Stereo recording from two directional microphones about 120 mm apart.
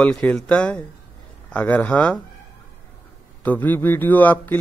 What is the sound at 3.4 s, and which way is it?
Speech, 15° left (ahead or behind).